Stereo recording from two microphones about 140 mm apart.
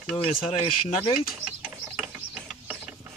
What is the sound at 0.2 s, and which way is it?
Speech, 45° left (ahead or behind).